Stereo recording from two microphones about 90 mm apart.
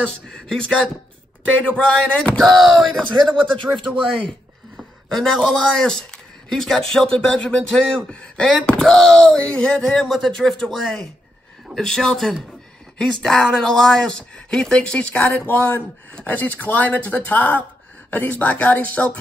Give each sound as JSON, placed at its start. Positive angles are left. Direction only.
{"t": 0.0, "sound": "a man's voice", "side_deg": 5}